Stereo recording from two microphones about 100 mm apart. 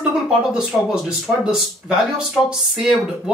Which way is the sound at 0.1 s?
5° right (ahead or behind).